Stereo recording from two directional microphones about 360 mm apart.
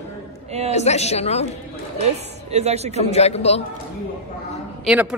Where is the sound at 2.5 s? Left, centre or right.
Centre.